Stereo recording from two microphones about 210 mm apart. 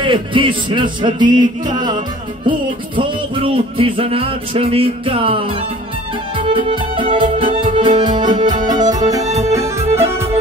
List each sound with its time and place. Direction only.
0.0 s music: 25° right (ahead or behind)
3.0 s music: 25° right (ahead or behind)
9.2 s music: 30° right (ahead or behind)
9.9 s music: 10° right (ahead or behind)